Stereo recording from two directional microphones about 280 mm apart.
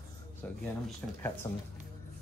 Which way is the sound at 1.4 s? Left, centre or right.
Centre.